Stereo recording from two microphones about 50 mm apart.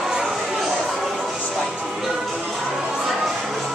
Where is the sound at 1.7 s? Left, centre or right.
Centre.